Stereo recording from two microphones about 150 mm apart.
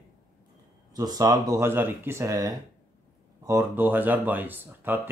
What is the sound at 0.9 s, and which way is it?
Speech, 25° right (ahead or behind).